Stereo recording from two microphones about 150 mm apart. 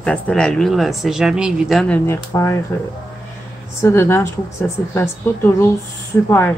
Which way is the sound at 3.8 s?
20° left (ahead or behind).